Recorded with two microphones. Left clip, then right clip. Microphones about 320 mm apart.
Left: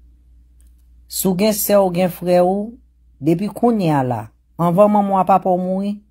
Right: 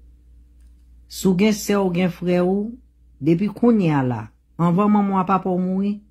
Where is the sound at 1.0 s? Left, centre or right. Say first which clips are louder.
Left 2 dB; centre.